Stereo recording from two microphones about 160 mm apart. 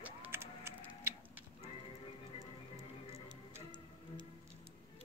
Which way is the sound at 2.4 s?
20° right (ahead or behind).